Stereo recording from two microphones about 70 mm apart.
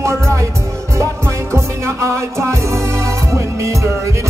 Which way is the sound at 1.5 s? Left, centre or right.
Right.